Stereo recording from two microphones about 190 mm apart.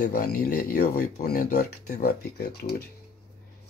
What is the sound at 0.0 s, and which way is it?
Speech, 55° left (ahead or behind).